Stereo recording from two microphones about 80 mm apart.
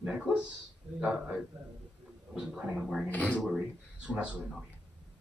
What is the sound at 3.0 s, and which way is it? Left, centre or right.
Speech, centre.